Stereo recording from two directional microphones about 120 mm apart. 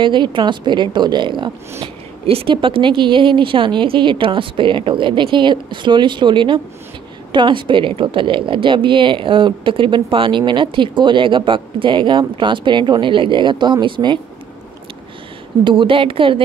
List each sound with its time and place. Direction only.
0.0 s a woman's voice: 40° right (ahead or behind)
1.8 s a woman's voice: 55° right (ahead or behind)
15.6 s a woman's voice: 45° right (ahead or behind)